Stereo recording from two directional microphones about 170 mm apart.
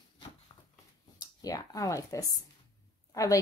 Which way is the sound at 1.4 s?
20° left (ahead or behind).